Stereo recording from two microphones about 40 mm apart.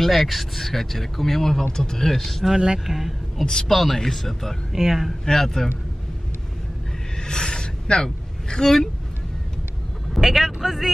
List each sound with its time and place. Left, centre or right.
0.0 s speech: centre
2.5 s speech: centre
2.9 s speech: centre
4.7 s speech: centre
5.2 s speech: centre
7.2 s a sound: centre
10.1 s speech: centre